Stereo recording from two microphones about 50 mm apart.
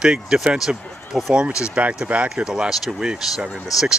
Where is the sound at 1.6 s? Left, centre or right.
Right.